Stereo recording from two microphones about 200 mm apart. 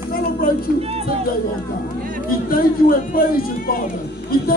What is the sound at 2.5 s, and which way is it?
Speech, 45° left (ahead or behind).